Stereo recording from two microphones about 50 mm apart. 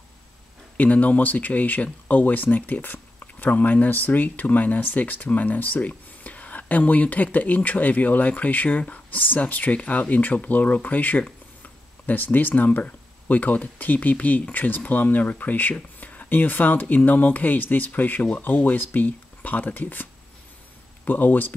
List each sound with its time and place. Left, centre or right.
0.7 s speech: left